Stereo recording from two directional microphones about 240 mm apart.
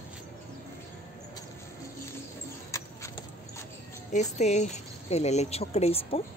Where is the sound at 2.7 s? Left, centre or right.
Centre.